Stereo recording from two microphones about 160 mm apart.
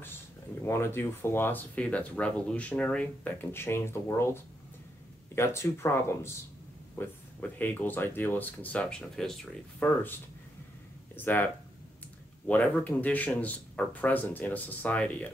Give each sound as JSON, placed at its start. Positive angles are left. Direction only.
{"t": 0.6, "sound": "speech", "side_deg": 15}
{"t": 11.1, "sound": "speech", "side_deg": 10}
{"t": 12.4, "sound": "speech", "side_deg": 10}